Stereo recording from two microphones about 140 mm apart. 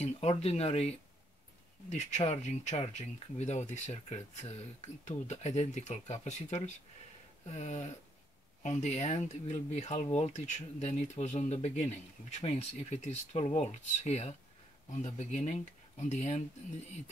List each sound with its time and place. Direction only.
0.0 s speech: 50° left (ahead or behind)